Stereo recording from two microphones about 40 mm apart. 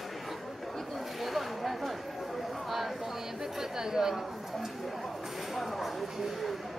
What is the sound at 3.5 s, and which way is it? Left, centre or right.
Chatter, centre.